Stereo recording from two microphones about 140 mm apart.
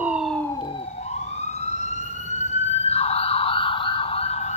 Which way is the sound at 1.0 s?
50° left (ahead or behind).